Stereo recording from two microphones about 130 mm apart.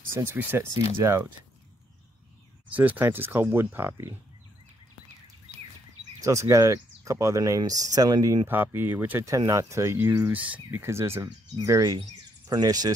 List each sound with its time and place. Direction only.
0.1 s speech: 15° right (ahead or behind)
2.7 s speech: 15° right (ahead or behind)
6.2 s speech: 25° right (ahead or behind)